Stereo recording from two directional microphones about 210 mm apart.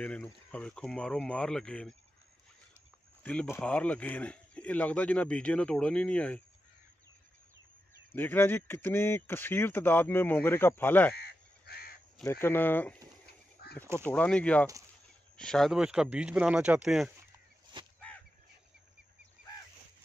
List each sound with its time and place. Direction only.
0.0 s speech: 5° left (ahead or behind)
3.3 s a man's voice: 10° left (ahead or behind)
8.1 s a man's voice: 10° left (ahead or behind)
11.1 s crow: 50° left (ahead or behind)
12.2 s a man's voice: 10° left (ahead or behind)
13.6 s a sound: 50° left (ahead or behind)
13.9 s speech: 5° left (ahead or behind)
17.8 s a sound: 20° right (ahead or behind)